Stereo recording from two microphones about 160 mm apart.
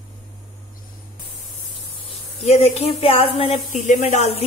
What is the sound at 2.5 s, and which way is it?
Speech, 40° left (ahead or behind).